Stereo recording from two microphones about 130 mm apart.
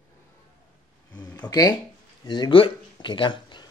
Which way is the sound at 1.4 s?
30° left (ahead or behind).